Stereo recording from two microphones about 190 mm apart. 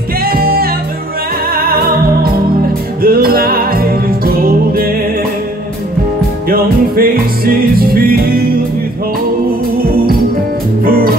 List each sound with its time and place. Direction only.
0.2 s music: 50° right (ahead or behind)
3.0 s music: 50° right (ahead or behind)
6.5 s music: 50° right (ahead or behind)
10.8 s music: 50° right (ahead or behind)